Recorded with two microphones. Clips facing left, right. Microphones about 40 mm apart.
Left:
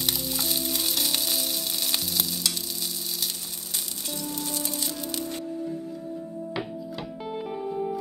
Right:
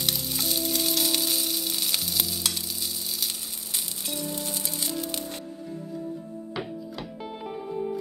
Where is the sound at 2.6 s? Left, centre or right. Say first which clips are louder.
Even; centre.